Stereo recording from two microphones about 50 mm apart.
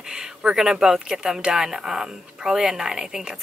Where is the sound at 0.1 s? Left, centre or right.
Centre.